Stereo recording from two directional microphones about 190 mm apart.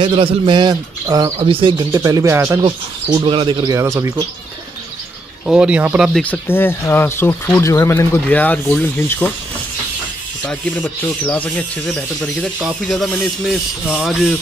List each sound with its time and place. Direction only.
0.0 s a man's voice: 30° right (ahead or behind)
2.6 s a man's voice: 30° right (ahead or behind)
5.5 s speech: 5° right (ahead or behind)
6.2 s speech: 10° left (ahead or behind)
10.4 s speech: 5° left (ahead or behind)